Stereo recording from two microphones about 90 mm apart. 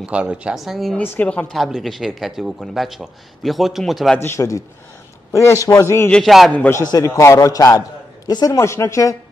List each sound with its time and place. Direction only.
0.0 s speech: 10° right (ahead or behind)
0.6 s speech: centre (ahead or behind)
0.9 s speech: 20° left (ahead or behind)
1.5 s speech: centre (ahead or behind)
4.2 s a man's voice: 30° left (ahead or behind)
6.2 s speech: centre (ahead or behind)
6.9 s a man's voice: 40° left (ahead or behind)
8.5 s a man's voice: 30° left (ahead or behind)